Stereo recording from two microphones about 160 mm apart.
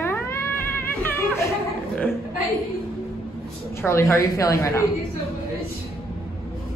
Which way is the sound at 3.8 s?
15° left (ahead or behind).